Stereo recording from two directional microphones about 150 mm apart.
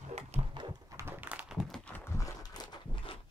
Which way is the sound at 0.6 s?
25° right (ahead or behind).